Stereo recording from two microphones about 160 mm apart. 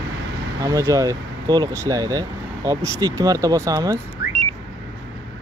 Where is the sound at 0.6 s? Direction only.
20° right (ahead or behind).